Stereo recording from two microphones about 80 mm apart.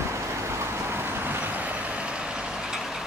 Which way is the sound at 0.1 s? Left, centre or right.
Right.